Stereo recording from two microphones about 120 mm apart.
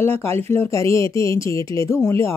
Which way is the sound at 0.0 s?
20° left (ahead or behind).